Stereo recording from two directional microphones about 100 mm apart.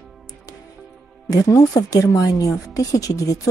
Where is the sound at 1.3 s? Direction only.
35° left (ahead or behind).